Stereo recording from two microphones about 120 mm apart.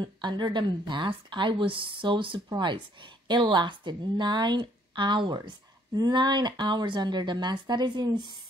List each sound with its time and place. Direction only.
0.0 s a woman's voice: 40° right (ahead or behind)